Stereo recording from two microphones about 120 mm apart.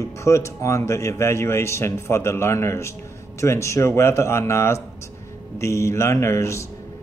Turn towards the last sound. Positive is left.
turn(degrees=25)  # may be behind; listen again after turning